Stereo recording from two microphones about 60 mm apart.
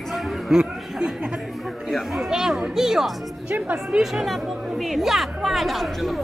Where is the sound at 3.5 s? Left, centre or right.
Right.